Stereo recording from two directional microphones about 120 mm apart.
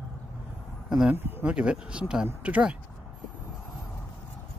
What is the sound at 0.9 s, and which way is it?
Speech, 5° right (ahead or behind).